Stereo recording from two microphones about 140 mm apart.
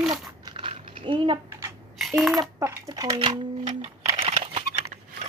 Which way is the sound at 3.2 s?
40° right (ahead or behind).